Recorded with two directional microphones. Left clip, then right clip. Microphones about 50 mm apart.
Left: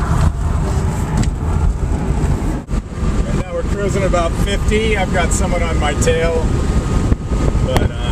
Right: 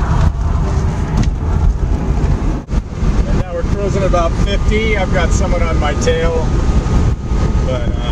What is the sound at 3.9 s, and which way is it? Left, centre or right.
Speech, left.